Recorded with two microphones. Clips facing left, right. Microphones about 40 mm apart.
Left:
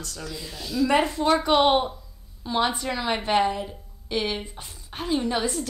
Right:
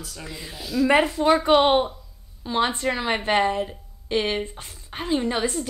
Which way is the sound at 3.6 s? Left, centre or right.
Right.